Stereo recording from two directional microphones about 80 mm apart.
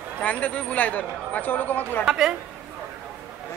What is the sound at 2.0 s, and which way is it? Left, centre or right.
Speech, centre.